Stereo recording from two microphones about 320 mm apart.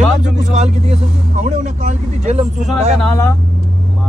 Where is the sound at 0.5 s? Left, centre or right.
Right.